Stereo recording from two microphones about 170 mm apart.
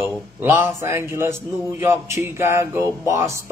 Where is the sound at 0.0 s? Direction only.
10° right (ahead or behind).